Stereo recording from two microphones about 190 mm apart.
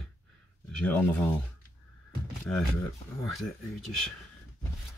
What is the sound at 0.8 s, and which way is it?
Speech, 10° left (ahead or behind).